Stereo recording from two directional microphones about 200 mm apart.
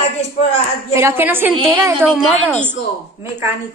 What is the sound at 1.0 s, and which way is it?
Speech, 10° right (ahead or behind).